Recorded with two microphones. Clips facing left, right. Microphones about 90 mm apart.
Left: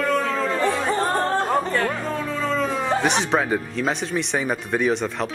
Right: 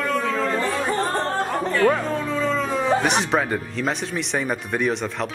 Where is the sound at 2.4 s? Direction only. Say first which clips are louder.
Even; centre (ahead or behind).